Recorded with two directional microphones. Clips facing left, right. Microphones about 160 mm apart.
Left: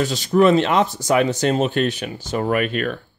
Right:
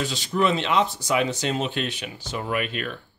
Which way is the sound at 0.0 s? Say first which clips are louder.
Left 8 dB; 45° left (ahead or behind).